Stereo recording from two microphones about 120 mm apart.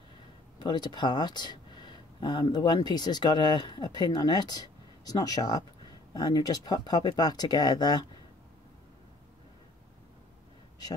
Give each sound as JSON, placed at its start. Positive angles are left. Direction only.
{"t": 0.6, "sound": "speech", "side_deg": 35}